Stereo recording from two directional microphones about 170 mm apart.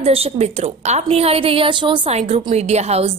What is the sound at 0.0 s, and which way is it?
A woman's voice, 35° right (ahead or behind).